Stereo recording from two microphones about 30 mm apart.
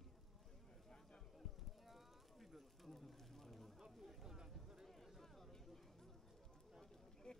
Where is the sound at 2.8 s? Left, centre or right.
Centre.